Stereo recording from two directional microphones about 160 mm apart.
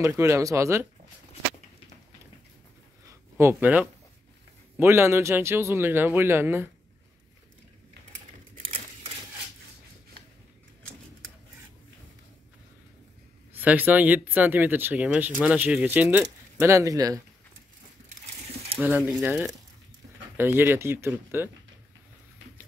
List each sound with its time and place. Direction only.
0.2 s speech: 20° right (ahead or behind)
3.1 s a sound: 15° right (ahead or behind)
4.7 s speech: 15° right (ahead or behind)
13.6 s speech: 10° right (ahead or behind)
18.8 s speech: 10° right (ahead or behind)